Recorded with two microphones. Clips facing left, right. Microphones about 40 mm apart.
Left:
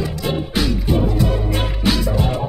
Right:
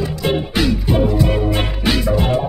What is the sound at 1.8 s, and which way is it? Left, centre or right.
Music, right.